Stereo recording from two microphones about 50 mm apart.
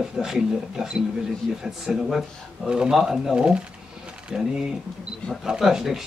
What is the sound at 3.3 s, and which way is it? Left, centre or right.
Speech, right.